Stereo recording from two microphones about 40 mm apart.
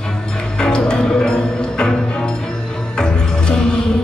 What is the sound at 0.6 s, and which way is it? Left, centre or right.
Music, left.